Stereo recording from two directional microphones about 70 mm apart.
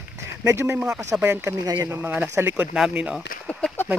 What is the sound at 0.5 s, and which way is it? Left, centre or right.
A man's voice, right.